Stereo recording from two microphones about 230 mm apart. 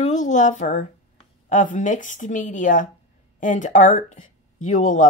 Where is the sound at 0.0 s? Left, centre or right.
Left.